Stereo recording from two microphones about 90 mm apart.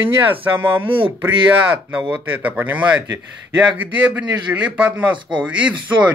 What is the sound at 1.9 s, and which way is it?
Speech, 20° right (ahead or behind).